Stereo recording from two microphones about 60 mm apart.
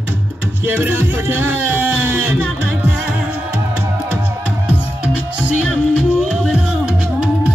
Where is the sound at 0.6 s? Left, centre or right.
Right.